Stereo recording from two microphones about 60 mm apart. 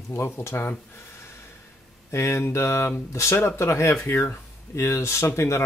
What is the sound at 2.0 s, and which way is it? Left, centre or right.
Speech, left.